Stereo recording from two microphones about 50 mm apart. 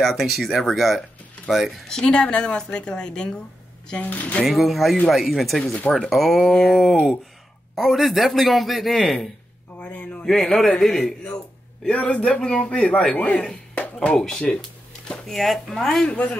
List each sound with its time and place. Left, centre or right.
0.0 s speech: centre
1.9 s a woman's voice: centre
4.0 s a man's voice: left
4.5 s a woman's voice: centre
9.8 s a sound: left
10.2 s a woman's voice: centre
11.9 s a man's voice: left
13.4 s a woman's voice: centre
16.1 s a man's voice: left